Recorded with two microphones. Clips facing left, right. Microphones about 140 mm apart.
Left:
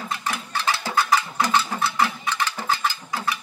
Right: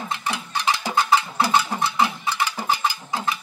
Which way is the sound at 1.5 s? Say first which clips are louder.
Right 1 dB; 15° right (ahead or behind).